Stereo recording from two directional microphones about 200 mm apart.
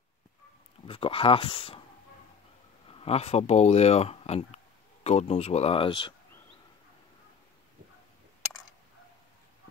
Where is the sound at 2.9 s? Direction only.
30° left (ahead or behind).